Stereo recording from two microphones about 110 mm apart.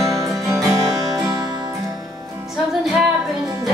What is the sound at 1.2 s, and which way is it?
Music, 35° right (ahead or behind).